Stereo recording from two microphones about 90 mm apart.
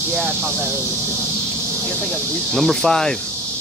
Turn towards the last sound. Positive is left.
turn(degrees=5)  # may be behind; listen again after turning